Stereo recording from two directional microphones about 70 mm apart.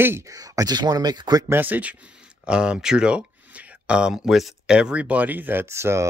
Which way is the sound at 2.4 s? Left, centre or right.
Centre.